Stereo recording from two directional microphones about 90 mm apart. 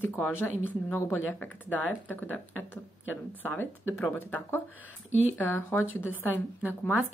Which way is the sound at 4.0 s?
20° left (ahead or behind).